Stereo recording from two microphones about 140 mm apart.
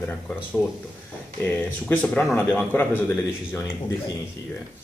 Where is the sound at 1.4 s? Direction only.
15° left (ahead or behind).